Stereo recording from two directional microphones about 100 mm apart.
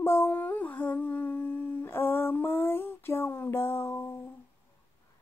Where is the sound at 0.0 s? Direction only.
25° left (ahead or behind).